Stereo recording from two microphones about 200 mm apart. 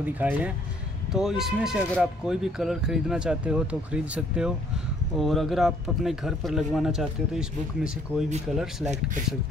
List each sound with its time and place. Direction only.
0.0 s speech: 10° right (ahead or behind)
8.8 s speech: 35° right (ahead or behind)